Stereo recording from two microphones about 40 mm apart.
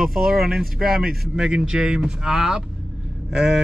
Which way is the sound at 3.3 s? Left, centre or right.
Centre.